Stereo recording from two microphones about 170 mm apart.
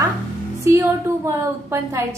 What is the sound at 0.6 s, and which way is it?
A woman's voice, 15° right (ahead or behind).